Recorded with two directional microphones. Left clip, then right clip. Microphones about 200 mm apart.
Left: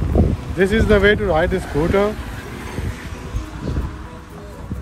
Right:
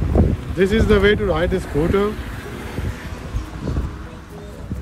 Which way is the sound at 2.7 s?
45° left (ahead or behind).